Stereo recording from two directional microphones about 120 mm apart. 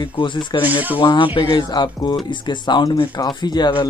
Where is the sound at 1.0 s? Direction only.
40° left (ahead or behind).